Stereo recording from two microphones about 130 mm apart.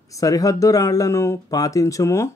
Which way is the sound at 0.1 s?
25° left (ahead or behind).